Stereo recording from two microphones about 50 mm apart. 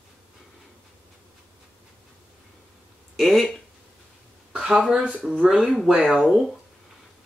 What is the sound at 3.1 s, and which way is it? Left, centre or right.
Speech, centre.